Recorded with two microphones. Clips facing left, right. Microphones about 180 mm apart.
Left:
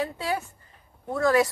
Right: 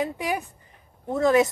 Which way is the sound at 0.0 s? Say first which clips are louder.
Right 2 dB; 15° right (ahead or behind).